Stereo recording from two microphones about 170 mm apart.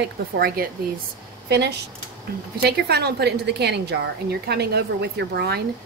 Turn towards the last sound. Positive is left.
turn(degrees=-75)  # may be behind; listen again after turning